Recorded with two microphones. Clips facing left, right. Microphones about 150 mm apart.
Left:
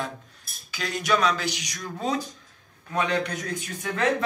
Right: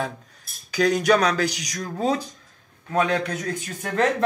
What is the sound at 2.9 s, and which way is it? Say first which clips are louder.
Speech: right 4 dB; 50° right (ahead or behind).